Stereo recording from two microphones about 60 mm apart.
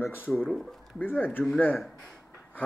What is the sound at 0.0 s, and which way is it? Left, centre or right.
Speech, left.